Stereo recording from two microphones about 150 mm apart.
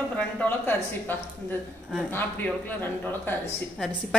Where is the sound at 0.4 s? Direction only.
15° left (ahead or behind).